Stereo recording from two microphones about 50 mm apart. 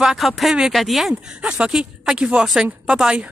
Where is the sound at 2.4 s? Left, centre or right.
Centre.